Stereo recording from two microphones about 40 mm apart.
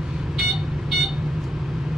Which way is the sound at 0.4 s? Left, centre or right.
Centre.